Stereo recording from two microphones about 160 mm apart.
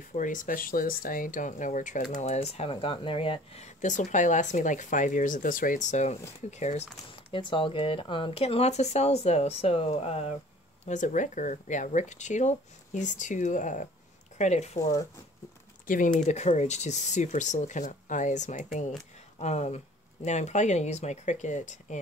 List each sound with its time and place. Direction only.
0.1 s speech: 55° left (ahead or behind)
2.2 s speech: 40° left (ahead or behind)
7.2 s speech: 30° left (ahead or behind)
10.9 s speech: 50° left (ahead or behind)
14.8 s speech: 20° left (ahead or behind)
15.9 s speech: 50° left (ahead or behind)